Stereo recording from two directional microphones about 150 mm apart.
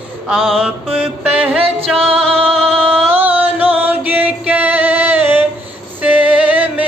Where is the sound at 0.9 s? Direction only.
10° right (ahead or behind).